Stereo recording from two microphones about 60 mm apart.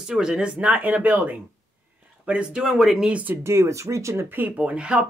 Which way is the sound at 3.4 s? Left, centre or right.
Right.